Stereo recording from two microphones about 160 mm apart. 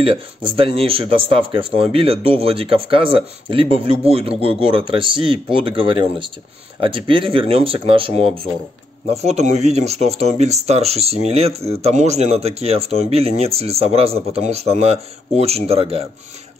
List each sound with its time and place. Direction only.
0.0 s speech: 35° right (ahead or behind)